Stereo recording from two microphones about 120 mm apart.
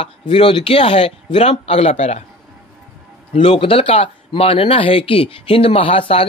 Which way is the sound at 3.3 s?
65° left (ahead or behind).